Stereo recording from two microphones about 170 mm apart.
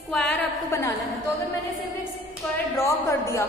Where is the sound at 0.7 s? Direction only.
20° left (ahead or behind).